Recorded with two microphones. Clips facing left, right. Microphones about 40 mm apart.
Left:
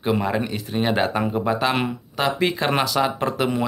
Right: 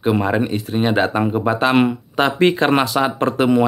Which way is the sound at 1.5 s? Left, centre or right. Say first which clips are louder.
Right 8 dB; right.